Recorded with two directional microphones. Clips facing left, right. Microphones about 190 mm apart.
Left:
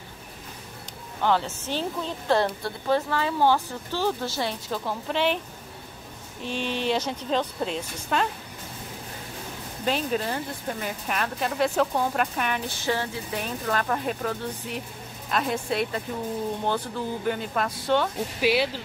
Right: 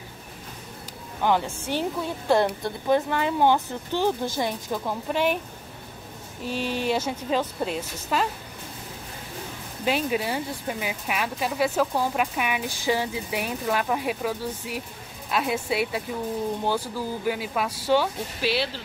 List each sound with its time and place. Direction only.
1.2 s speech: 15° right (ahead or behind)
6.4 s speech: 5° right (ahead or behind)
9.8 s speech: 10° right (ahead or behind)
18.4 s speech: 10° left (ahead or behind)